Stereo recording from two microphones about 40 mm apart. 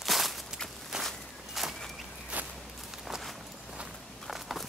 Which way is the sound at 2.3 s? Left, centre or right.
Right.